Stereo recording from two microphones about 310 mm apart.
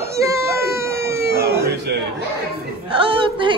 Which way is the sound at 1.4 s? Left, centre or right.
Centre.